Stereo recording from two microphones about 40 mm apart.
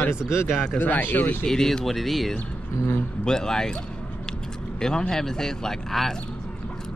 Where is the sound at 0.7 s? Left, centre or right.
Left.